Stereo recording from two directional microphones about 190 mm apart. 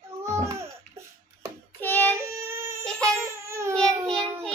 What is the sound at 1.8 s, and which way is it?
Child singing, 10° left (ahead or behind).